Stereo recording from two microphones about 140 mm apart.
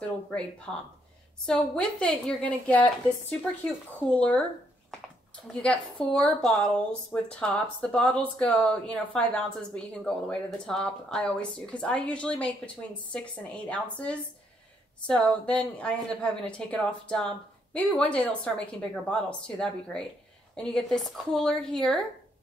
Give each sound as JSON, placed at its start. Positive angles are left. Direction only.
{"t": 0.7, "sound": "speech", "side_deg": 10}
{"t": 5.5, "sound": "a woman's voice", "side_deg": 5}